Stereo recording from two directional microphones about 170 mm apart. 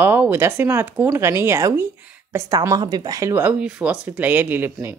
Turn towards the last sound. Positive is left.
turn(degrees=-10)  # may be behind; listen again after turning